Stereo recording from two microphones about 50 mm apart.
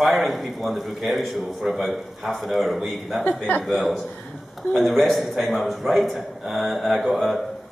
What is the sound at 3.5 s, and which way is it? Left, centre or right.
Speech, left.